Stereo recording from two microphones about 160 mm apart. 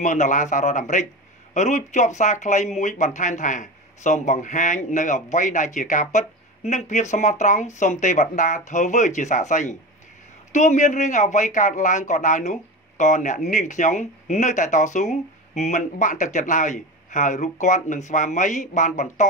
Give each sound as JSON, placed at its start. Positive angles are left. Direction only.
{"t": 0.0, "sound": "speech", "side_deg": 50}